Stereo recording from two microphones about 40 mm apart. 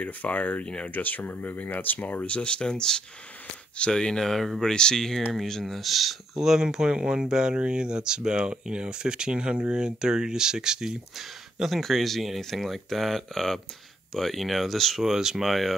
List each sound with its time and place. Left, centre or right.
0.0 s speech: left
0.7 s speech: left
0.9 s speech: left
2.2 s speech: left
2.7 s speech: centre
5.8 s speech: centre
6.9 s speech: right
11.1 s speech: centre
15.0 s speech: centre
15.4 s speech: centre